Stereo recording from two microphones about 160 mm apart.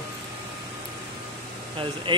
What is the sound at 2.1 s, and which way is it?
Speech, 30° right (ahead or behind).